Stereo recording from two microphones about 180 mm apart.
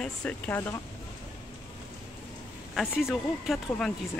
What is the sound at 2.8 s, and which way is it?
Speech, centre (ahead or behind).